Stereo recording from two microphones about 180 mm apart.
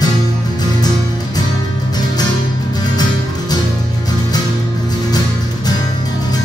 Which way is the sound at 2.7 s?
20° left (ahead or behind).